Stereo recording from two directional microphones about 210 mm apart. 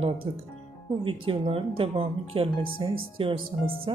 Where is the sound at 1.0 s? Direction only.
25° right (ahead or behind).